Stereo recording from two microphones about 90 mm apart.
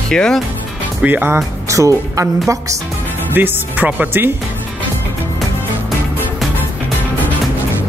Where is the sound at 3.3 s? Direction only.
20° right (ahead or behind).